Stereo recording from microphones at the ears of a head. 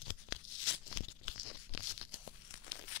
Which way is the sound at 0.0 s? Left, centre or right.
Left.